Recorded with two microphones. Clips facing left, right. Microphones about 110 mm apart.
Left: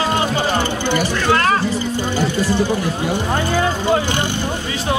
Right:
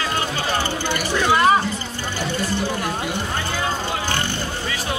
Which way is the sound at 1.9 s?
15° left (ahead or behind).